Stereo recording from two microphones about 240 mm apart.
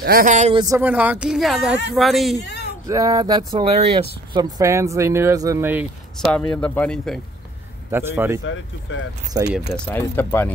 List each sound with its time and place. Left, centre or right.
0.0 s speech: right
0.7 s speech: centre
2.9 s speech: centre
6.5 s speech: centre
7.9 s speech: centre
8.9 s speech: left
9.3 s speech: centre
9.8 s speech: centre